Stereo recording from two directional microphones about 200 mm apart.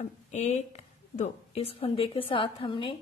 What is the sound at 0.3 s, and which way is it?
A woman's voice, 35° left (ahead or behind).